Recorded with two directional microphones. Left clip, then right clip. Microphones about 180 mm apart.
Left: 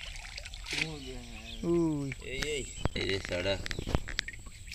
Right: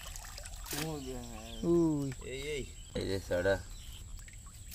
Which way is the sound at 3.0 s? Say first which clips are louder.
Right 2 dB; 30° right (ahead or behind).